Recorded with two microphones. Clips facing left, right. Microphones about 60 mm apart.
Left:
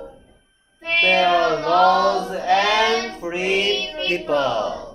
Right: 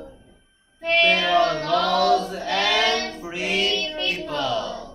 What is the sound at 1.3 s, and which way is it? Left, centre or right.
Female singing, left.